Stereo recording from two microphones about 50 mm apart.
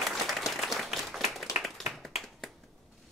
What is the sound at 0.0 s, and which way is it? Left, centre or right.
Applause, centre.